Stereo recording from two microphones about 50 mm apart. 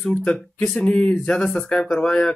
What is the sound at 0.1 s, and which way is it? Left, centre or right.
Speech, centre.